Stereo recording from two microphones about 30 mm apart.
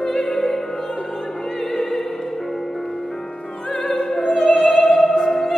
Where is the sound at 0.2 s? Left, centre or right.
Centre.